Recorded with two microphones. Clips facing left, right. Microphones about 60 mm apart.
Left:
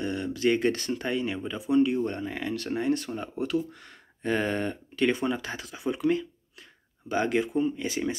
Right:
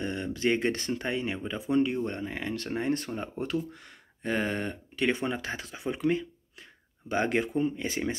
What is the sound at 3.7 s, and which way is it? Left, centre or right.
Speech, centre.